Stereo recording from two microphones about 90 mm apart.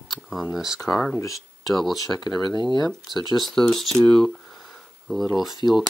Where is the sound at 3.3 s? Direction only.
5° left (ahead or behind).